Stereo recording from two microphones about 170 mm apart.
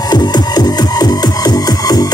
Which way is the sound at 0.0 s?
25° left (ahead or behind).